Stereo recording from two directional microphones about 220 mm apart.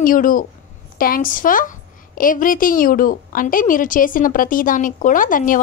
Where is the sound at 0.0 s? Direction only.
40° left (ahead or behind).